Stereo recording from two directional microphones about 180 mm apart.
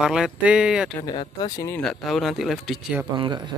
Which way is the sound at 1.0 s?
25° left (ahead or behind).